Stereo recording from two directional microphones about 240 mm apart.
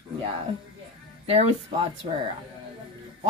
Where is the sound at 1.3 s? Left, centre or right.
Right.